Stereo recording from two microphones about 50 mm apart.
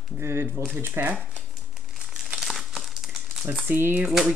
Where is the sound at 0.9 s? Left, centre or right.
Right.